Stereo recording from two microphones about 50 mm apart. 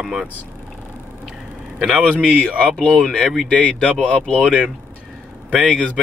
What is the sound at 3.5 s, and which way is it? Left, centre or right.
Speech, left.